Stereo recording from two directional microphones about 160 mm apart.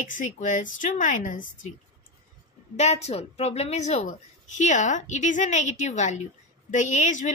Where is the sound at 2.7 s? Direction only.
45° left (ahead or behind).